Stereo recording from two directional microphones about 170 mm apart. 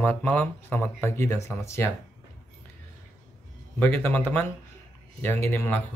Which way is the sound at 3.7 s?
10° left (ahead or behind).